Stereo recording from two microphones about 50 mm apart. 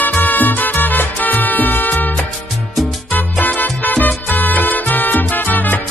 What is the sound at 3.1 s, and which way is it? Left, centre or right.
Salsa music, left.